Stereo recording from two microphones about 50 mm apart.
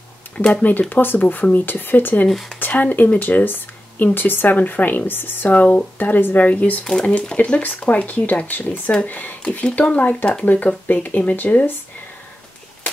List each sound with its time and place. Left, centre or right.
0.4 s speech: left
5.5 s speech: left
7.0 s speech: centre